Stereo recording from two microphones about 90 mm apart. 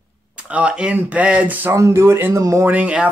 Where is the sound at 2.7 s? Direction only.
15° right (ahead or behind).